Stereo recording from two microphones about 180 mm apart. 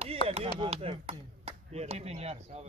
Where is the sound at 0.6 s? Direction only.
30° right (ahead or behind).